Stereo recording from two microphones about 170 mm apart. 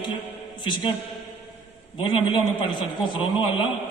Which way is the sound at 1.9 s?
30° left (ahead or behind).